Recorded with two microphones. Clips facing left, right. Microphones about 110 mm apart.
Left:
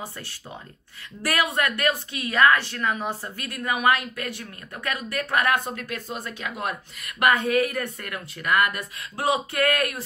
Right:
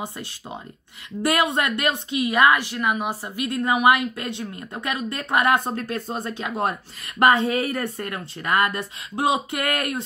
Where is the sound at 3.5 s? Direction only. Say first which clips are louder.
Right 4 dB; 25° right (ahead or behind).